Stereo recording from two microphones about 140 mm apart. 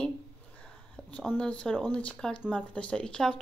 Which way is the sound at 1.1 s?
5° left (ahead or behind).